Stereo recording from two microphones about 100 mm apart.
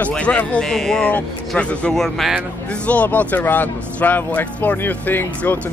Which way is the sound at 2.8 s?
15° left (ahead or behind).